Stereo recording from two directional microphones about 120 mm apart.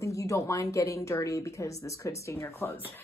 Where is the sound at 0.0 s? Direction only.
25° left (ahead or behind).